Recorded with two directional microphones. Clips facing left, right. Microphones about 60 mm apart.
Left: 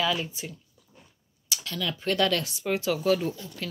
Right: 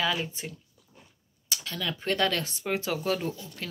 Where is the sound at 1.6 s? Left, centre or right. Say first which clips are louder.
Left 2 dB; right.